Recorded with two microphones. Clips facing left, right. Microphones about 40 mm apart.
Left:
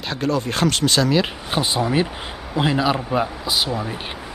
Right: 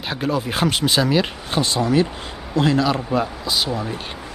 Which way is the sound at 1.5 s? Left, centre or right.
Centre.